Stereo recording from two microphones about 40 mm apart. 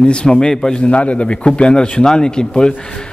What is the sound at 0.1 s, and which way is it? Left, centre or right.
Speech, left.